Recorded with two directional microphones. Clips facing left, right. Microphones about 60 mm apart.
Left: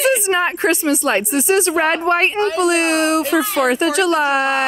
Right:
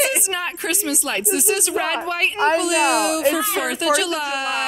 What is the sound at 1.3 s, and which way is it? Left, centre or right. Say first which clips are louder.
A woman's voice: left 3 dB; left.